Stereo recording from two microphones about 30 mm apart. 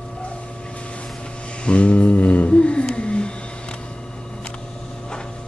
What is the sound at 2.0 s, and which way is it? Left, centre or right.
Music, left.